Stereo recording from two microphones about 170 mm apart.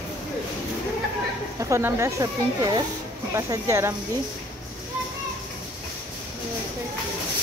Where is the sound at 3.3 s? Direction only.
15° right (ahead or behind).